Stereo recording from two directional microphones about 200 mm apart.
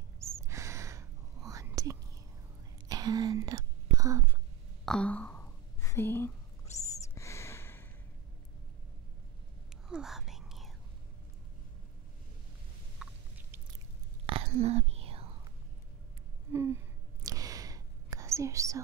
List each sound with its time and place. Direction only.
0.2 s whispering: 15° right (ahead or behind)
4.8 s a sound: 5° left (ahead or behind)
9.8 s whispering: 5° right (ahead or behind)
13.0 s a sound: 5° right (ahead or behind)
14.2 s whispering: 30° right (ahead or behind)
16.5 s whispering: 15° right (ahead or behind)